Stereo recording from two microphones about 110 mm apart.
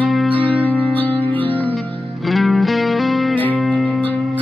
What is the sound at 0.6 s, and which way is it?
Music, 15° left (ahead or behind).